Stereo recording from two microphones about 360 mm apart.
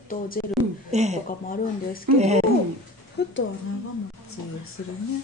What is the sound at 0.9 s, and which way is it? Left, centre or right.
Speech, centre.